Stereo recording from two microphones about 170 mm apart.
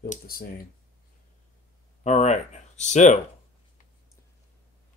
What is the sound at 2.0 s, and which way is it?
Speech, 40° left (ahead or behind).